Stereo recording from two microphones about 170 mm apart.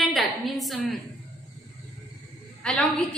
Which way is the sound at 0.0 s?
Centre (ahead or behind).